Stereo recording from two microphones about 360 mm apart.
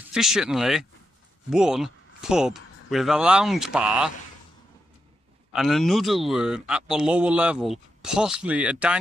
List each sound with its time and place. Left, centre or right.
0.1 s a man's voice: centre
5.5 s a man's voice: centre